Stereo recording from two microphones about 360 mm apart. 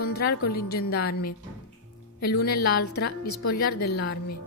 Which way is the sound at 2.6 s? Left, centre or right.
Left.